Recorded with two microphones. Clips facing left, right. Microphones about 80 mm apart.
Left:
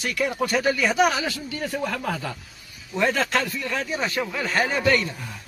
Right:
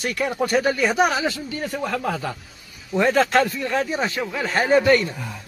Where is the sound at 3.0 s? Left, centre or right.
Right.